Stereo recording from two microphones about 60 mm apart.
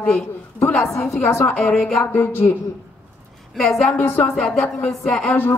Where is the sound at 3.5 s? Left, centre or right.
Centre.